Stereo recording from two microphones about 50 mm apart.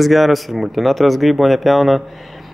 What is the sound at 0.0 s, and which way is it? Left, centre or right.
Speech, centre.